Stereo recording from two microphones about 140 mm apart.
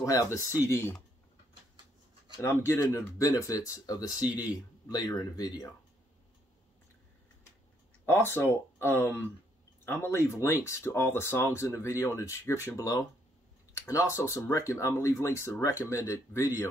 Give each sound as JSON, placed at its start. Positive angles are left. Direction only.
{"t": 0.0, "sound": "speech", "side_deg": 25}
{"t": 2.4, "sound": "speech", "side_deg": 20}
{"t": 8.0, "sound": "speech", "side_deg": 15}